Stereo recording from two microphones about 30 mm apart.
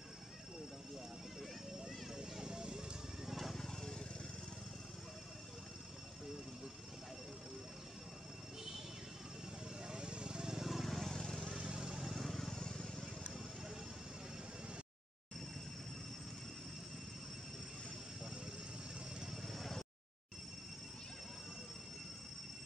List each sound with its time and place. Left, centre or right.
2.4 s music: right
9.8 s vehicle: right
10.6 s vehicle: centre
11.1 s vehicle: centre
11.4 s vehicle: right
12.0 s vehicle: centre
12.5 s vehicle: left
19.4 s a sound: centre